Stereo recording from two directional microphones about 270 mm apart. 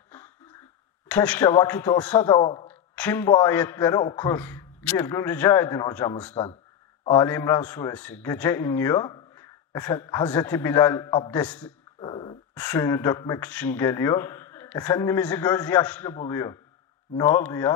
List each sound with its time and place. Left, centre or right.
1.0 s a man's voice: centre
2.7 s a man's voice: centre
6.3 s a man's voice: left; by 11.7 s centre
12.0 s dog: centre
12.5 s a man's voice: centre